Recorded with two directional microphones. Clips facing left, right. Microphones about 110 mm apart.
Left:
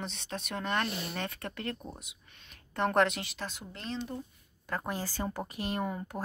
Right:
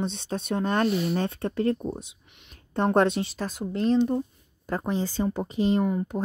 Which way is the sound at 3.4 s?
40° right (ahead or behind).